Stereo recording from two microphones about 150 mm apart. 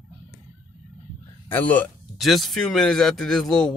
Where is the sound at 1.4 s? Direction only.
10° left (ahead or behind).